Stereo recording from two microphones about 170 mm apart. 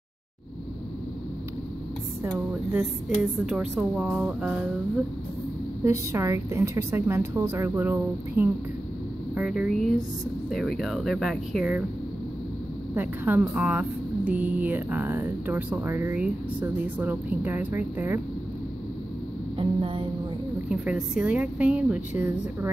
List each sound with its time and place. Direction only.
2.2 s a woman's voice: 5° right (ahead or behind)
5.9 s a woman's voice: 15° right (ahead or behind)
12.9 s speech: 10° right (ahead or behind)
19.6 s a sound: 30° right (ahead or behind)
20.6 s speech: 5° right (ahead or behind)